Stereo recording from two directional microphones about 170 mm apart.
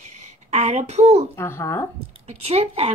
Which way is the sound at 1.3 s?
15° left (ahead or behind).